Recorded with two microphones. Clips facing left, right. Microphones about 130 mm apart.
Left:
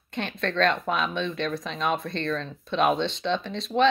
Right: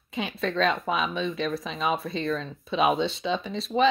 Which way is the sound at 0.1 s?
5° right (ahead or behind).